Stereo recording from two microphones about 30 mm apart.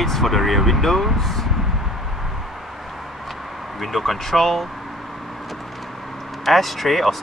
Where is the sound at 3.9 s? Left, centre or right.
Centre.